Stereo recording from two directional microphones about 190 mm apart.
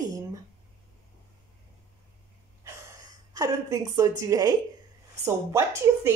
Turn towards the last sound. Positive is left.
turn(degrees=-15)  # may be behind; listen again after turning